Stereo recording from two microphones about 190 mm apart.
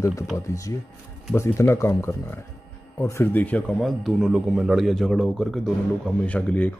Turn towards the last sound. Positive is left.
turn(degrees=5)  # may be behind; listen again after turning